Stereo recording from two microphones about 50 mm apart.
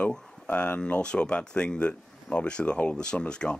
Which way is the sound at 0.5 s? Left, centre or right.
Left.